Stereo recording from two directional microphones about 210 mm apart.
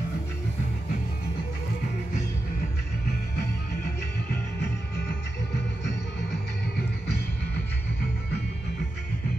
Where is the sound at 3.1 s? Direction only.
50° left (ahead or behind).